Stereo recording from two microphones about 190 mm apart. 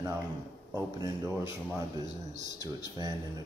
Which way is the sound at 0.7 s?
15° right (ahead or behind).